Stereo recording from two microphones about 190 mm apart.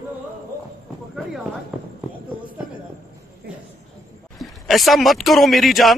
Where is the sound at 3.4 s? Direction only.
55° right (ahead or behind).